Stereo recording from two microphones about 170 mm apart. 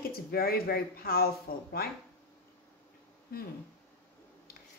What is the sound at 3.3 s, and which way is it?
Speech, 60° left (ahead or behind).